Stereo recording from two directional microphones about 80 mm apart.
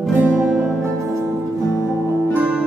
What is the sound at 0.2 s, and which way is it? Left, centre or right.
Music, right.